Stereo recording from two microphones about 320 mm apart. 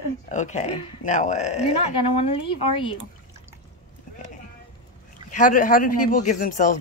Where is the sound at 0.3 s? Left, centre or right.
Left.